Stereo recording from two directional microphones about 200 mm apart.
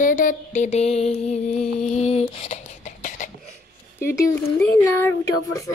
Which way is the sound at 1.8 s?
35° left (ahead or behind).